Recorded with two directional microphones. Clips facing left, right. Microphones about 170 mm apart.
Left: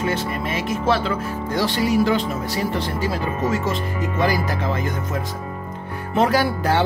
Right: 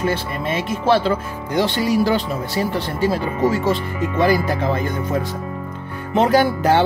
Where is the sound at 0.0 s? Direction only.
30° right (ahead or behind).